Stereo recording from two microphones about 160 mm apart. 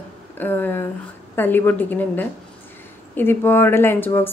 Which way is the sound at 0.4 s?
10° left (ahead or behind).